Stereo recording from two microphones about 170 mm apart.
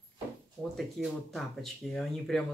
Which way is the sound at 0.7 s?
Centre (ahead or behind).